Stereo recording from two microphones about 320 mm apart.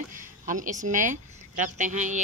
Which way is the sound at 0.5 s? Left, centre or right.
Right.